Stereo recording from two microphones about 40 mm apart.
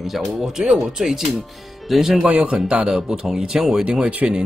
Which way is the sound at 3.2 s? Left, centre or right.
Centre.